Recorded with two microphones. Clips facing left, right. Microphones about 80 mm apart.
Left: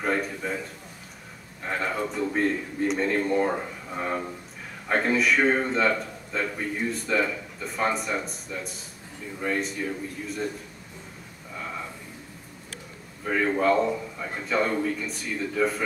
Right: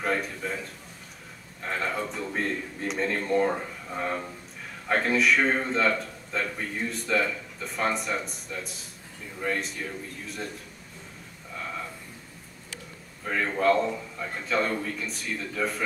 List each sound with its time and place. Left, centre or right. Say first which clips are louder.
0.0 s a man's voice: left 2 dB; centre
1.6 s a man's voice: left 2 dB; centre
11.5 s a sound: left 1 dB; centre
13.2 s a man's voice: left 2 dB; centre